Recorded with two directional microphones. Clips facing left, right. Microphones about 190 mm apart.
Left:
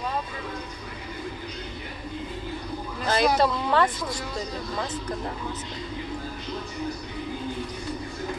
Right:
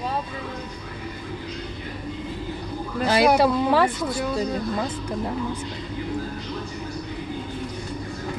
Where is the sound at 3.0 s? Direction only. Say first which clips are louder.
Right 4 dB; 10° right (ahead or behind).